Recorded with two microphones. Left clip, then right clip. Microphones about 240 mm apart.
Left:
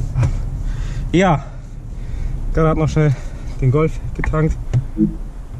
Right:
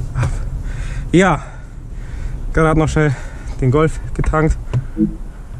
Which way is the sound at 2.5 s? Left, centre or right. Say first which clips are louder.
Right 3 dB; right.